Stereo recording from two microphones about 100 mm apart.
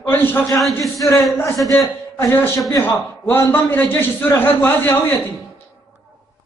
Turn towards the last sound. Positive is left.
turn(degrees=20)  # may be behind; listen again after turning